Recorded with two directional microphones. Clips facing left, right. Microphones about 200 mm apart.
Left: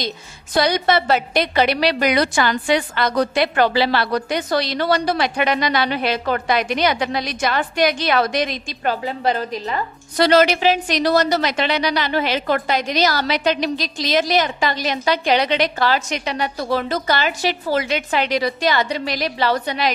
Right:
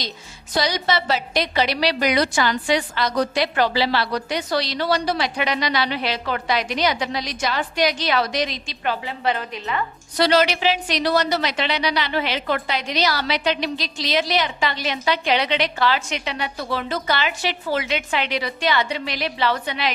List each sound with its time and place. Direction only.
0.6 s a woman's voice: 55° left (ahead or behind); by 9.8 s 35° left (ahead or behind)
10.1 s a woman's voice: 50° left (ahead or behind)